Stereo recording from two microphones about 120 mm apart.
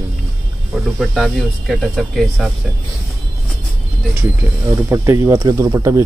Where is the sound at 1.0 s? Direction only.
Centre (ahead or behind).